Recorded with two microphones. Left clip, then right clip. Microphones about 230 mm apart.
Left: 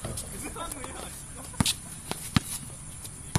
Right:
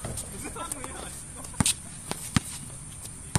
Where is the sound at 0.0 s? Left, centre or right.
Centre.